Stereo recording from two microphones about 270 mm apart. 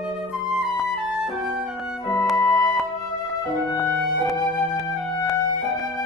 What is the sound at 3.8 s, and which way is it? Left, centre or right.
Music, centre.